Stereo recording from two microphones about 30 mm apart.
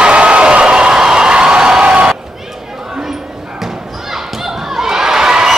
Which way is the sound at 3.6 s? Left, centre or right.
Centre.